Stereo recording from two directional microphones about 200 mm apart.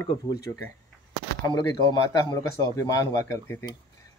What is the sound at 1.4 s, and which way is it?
Speech, 15° left (ahead or behind).